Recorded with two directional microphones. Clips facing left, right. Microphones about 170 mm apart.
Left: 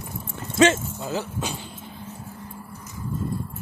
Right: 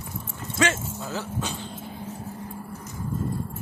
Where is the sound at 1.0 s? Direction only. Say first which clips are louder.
Left 3 dB; 15° left (ahead or behind).